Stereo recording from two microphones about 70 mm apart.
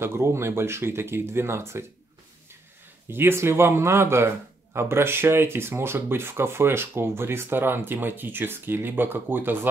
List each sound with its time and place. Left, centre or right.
0.0 s speech: right
3.1 s speech: right